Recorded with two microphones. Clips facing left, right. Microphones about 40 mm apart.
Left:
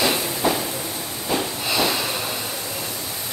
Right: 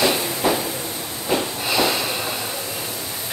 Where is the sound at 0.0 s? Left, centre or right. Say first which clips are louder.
Right 1 dB; centre.